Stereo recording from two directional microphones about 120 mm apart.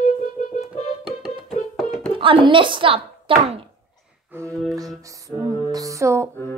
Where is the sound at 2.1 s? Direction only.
45° right (ahead or behind).